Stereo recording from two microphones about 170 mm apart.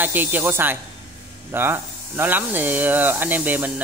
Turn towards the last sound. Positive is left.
turn(degrees=-10)  # may be behind; listen again after turning